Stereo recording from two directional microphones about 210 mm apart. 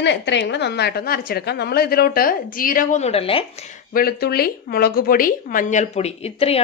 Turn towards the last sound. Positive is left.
turn(degrees=30)  # may be behind; listen again after turning